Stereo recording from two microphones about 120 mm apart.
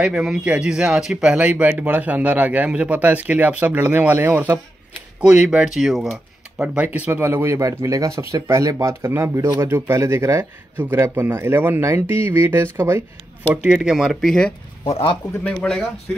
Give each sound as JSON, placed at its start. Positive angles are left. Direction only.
{"t": 0.0, "sound": "speech", "side_deg": -5}
{"t": 6.6, "sound": "speech", "side_deg": -10}
{"t": 13.6, "sound": "speech", "side_deg": -5}
{"t": 14.9, "sound": "a man's voice", "side_deg": 55}
{"t": 15.4, "sound": "speech", "side_deg": 10}